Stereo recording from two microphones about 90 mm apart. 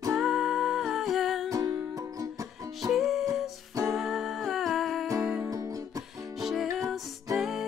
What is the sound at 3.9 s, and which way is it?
Humming, centre (ahead or behind).